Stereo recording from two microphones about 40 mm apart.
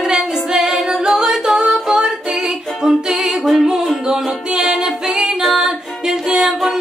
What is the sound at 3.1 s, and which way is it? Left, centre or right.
Music, centre.